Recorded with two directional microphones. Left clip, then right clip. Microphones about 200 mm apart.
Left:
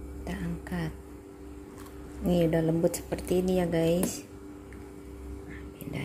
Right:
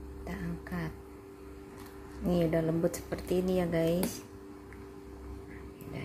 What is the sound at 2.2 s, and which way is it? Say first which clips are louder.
Speech: left 3 dB; 10° left (ahead or behind).